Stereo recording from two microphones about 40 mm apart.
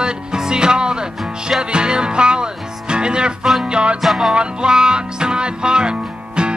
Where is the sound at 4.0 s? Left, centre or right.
Centre.